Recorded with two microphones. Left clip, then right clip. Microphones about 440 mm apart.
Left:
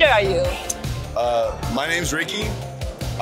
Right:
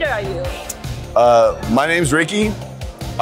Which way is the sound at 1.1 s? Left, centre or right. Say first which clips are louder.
Right 9 dB; right.